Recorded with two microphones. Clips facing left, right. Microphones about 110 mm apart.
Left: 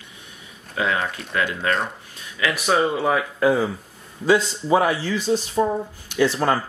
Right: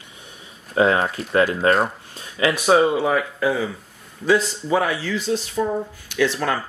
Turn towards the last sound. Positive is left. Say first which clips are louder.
# left 2 dB
turn(degrees=15)  # may be behind; listen again after turning